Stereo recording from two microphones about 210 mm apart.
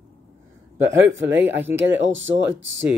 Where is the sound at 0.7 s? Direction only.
10° right (ahead or behind).